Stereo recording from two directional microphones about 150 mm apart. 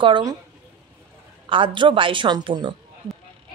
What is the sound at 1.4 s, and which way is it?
Speech, 35° right (ahead or behind).